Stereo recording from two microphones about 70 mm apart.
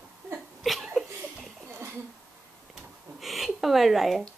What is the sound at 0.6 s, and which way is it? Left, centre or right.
Laughter, centre.